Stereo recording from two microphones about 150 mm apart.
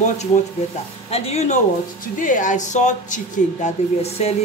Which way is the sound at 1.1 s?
45° left (ahead or behind).